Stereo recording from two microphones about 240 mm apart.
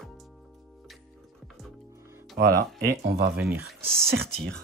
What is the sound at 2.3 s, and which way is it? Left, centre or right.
Speech, right.